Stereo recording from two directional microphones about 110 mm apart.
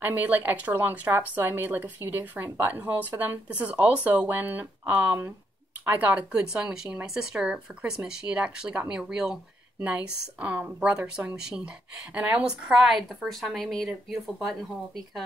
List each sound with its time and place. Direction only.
0.0 s speech: 15° right (ahead or behind)